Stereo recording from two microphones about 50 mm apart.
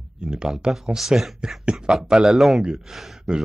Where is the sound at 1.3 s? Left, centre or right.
Centre.